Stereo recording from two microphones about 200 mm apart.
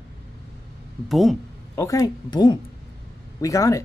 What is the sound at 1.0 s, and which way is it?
Speech, centre (ahead or behind).